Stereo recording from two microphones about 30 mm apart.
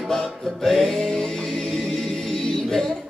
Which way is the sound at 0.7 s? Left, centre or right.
Centre.